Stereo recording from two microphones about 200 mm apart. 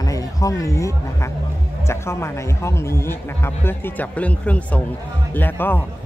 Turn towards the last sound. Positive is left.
turn(degrees=10)  # may be behind; listen again after turning